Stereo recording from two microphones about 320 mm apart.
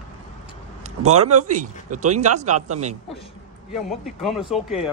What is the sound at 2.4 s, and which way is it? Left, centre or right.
Speech, right.